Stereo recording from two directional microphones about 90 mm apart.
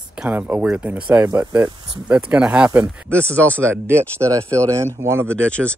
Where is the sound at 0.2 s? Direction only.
20° right (ahead or behind).